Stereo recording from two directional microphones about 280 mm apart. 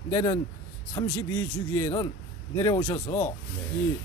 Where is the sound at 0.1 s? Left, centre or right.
Centre.